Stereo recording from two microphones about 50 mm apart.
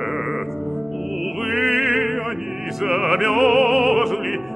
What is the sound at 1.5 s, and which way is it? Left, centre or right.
Music, right.